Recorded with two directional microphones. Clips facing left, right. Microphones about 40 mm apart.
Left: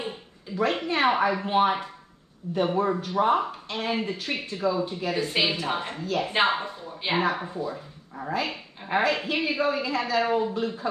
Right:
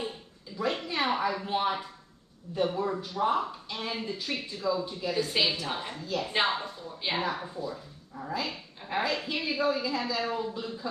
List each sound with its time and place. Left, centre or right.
0.6 s speech: left
6.3 s speech: left